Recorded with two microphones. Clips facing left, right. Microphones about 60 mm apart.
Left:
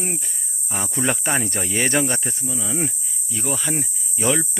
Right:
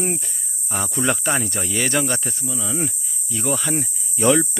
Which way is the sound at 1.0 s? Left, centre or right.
Left.